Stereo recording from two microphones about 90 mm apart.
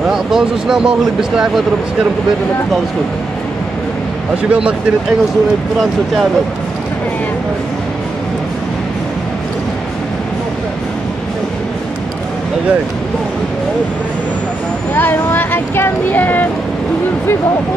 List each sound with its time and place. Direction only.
0.1 s speech: 5° right (ahead or behind)
4.4 s speech: 15° right (ahead or behind)
15.0 s speech: 20° left (ahead or behind)